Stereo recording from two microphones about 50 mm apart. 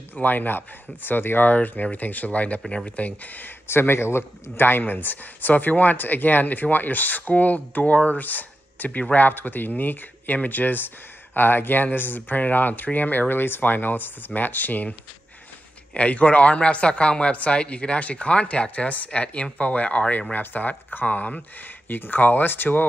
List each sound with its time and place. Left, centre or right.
0.1 s speech: left
3.6 s speech: left
21.5 s speech: left